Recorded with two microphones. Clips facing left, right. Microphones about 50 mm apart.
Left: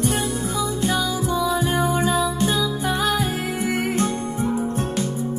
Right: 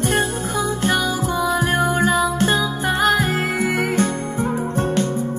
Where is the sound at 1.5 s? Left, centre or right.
Right.